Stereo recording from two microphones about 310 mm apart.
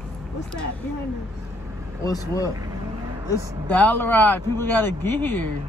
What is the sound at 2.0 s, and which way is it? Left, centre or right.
Speech, centre.